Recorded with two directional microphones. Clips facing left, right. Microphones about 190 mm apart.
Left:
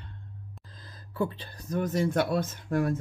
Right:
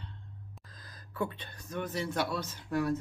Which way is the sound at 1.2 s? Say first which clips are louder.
Left 5 dB; 30° left (ahead or behind).